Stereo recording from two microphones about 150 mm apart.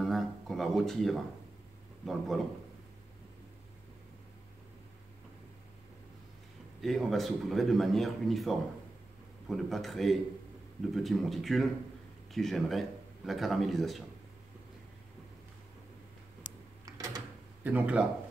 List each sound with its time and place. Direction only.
0.0 s music: centre (ahead or behind)
2.0 s speech: centre (ahead or behind)
6.8 s speech: centre (ahead or behind)
16.8 s a sound: 25° right (ahead or behind)
17.6 s speech: 10° right (ahead or behind)